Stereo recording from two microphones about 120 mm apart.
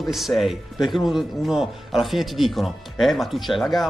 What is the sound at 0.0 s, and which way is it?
Speech, centre (ahead or behind).